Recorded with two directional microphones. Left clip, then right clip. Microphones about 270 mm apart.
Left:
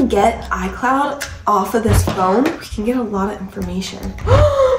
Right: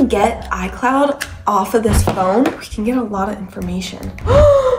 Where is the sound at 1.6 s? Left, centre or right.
Centre.